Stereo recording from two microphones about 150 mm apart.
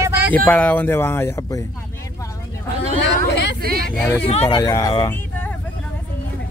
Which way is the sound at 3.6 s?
90° right.